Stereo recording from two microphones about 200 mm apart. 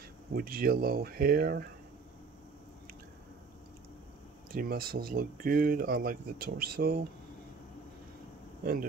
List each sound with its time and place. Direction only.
0.3 s speech: 45° right (ahead or behind)
4.5 s speech: 45° right (ahead or behind)